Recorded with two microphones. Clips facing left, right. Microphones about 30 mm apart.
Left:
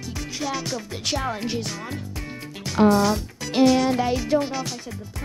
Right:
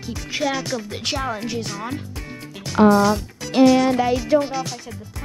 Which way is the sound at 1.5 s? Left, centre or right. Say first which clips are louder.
Right 2 dB; centre.